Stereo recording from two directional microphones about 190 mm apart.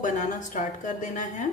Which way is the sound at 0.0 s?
40° left (ahead or behind).